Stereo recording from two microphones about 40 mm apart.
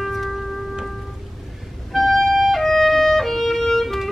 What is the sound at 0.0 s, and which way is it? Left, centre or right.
Music, centre.